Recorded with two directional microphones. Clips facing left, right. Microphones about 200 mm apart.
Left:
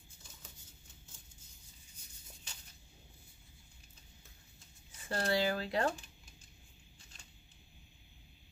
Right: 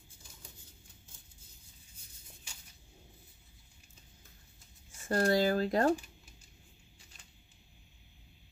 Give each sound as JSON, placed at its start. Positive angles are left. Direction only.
{"t": 5.0, "sound": "speech", "side_deg": -45}